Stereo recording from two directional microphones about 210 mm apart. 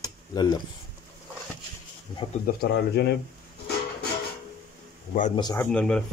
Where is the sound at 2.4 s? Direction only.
50° left (ahead or behind).